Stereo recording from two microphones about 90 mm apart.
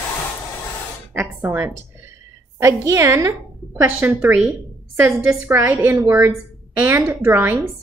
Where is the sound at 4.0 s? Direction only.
20° right (ahead or behind).